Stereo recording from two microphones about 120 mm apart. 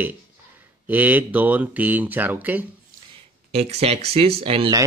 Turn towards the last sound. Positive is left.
turn(degrees=-50)  # may be behind; listen again after turning